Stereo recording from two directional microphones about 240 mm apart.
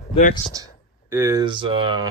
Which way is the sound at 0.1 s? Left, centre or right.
Left.